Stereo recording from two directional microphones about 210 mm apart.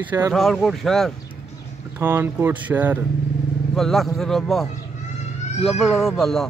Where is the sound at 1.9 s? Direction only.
10° right (ahead or behind).